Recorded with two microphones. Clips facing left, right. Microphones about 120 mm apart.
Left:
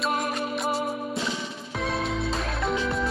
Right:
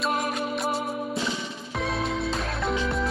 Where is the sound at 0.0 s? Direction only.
Centre (ahead or behind).